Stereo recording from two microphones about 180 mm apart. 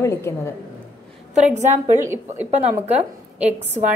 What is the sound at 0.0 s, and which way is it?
Speech, 15° left (ahead or behind).